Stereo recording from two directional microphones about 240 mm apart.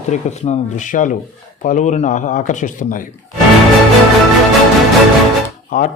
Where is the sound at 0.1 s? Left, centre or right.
Left.